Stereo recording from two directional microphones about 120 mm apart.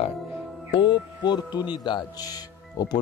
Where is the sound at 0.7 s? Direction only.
40° left (ahead or behind).